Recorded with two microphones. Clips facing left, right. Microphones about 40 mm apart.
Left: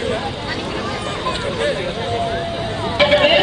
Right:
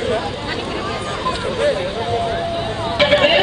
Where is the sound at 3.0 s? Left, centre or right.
Centre.